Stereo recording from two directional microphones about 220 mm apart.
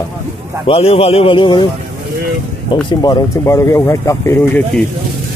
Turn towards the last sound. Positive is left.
turn(degrees=15)  # may be behind; listen again after turning